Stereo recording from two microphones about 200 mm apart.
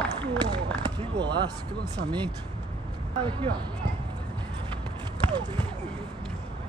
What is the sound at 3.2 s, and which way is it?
Speech, 20° right (ahead or behind).